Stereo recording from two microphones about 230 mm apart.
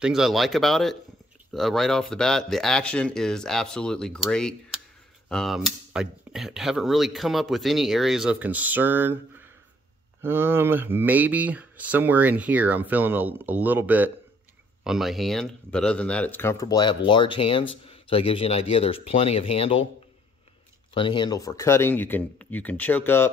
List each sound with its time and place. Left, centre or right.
0.0 s speech: centre
10.2 s speech: centre; by 19.9 s left
20.9 s speech: left